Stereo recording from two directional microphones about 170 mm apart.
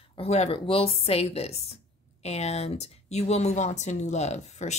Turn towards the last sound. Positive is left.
turn(degrees=40)  # may be behind; listen again after turning